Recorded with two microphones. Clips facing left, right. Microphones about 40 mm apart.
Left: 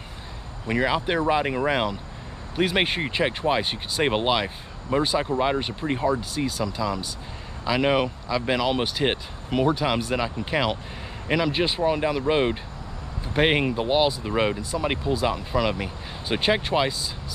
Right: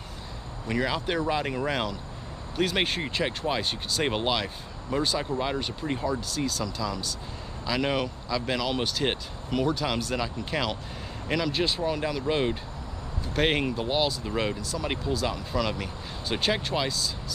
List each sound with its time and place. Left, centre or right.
0.7 s speech: centre